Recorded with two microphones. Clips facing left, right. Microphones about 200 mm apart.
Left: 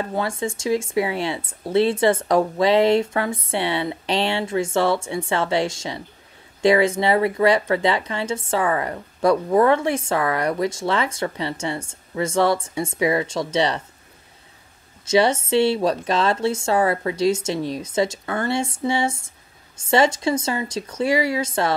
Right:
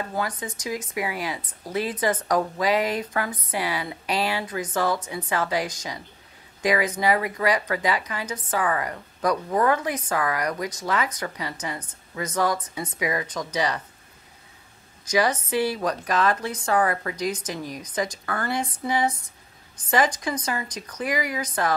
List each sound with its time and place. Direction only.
0.1 s speech: 25° left (ahead or behind)
15.0 s speech: 25° left (ahead or behind)